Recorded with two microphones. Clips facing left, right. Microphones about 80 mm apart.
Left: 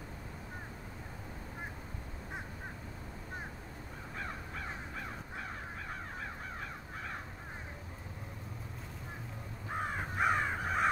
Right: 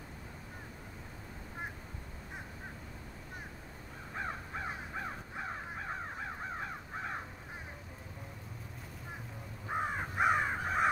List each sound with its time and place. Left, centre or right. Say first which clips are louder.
4.2 s crow: right 3 dB; right
9.7 s crow: right 2 dB; centre